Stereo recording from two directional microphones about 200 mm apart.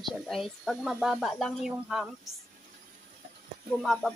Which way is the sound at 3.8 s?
Centre (ahead or behind).